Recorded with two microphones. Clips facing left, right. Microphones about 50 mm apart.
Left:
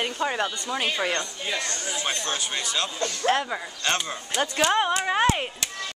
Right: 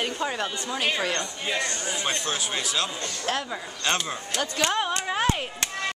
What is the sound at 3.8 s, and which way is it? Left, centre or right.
Speech, centre.